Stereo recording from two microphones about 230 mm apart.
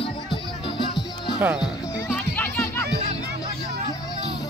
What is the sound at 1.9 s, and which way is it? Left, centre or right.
Music, centre.